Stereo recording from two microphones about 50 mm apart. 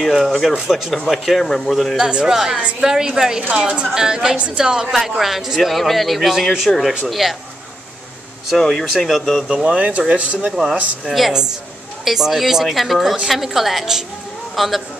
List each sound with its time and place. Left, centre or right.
0.0 s a man's voice: centre
2.0 s a woman's voice: centre
2.3 s a woman's voice: centre
4.8 s a man's voice: centre
8.5 s speech: centre
9.0 s a man's voice: centre
9.5 s a woman's voice: centre
10.5 s a woman's voice: centre